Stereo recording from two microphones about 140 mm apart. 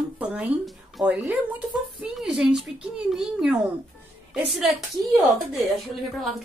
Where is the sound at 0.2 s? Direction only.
10° right (ahead or behind).